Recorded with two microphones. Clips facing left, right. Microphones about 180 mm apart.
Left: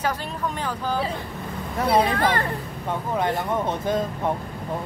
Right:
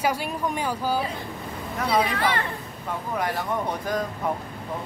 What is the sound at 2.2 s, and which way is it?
Speech, 45° left (ahead or behind).